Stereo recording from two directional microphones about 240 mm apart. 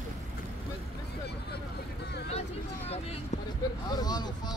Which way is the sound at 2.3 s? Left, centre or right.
Left.